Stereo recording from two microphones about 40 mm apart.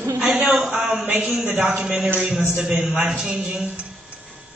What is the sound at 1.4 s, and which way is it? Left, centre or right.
Speech, right.